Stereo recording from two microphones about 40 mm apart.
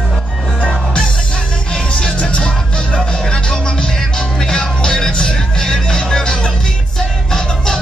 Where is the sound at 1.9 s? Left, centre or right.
Left; by 7.7 s centre.